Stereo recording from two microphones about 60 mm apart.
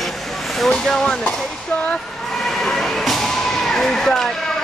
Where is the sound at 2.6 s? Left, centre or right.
Centre.